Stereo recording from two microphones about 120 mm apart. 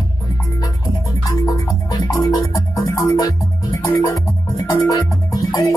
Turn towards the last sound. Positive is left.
turn(degrees=30)  # may be behind; listen again after turning